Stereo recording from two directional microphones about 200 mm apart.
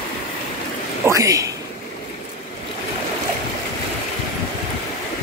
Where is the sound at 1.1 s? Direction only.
15° right (ahead or behind).